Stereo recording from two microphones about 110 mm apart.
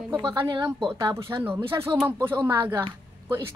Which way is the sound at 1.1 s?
20° right (ahead or behind).